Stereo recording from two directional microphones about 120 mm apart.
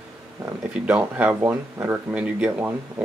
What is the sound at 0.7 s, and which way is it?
Speech, 10° right (ahead or behind).